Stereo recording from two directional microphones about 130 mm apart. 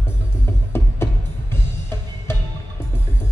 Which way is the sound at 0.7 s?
20° left (ahead or behind).